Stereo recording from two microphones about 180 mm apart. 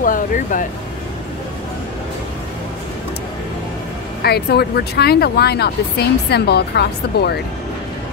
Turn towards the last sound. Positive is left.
turn(degrees=65)  # may be behind; listen again after turning